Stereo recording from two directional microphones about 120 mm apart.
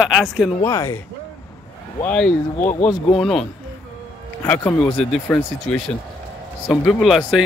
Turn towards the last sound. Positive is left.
turn(degrees=0)  # may be behind; listen again after turning